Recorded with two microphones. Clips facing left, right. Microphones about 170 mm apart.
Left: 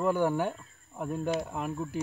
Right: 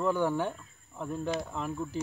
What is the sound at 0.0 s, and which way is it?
Speech, 10° left (ahead or behind).